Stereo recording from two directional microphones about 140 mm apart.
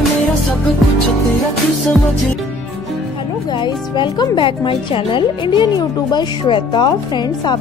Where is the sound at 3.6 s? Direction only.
35° left (ahead or behind).